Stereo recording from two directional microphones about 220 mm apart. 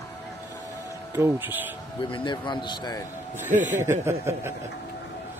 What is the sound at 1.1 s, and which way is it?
Speech, 10° right (ahead or behind).